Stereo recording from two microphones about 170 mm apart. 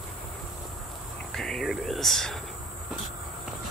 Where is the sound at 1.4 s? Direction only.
Centre (ahead or behind).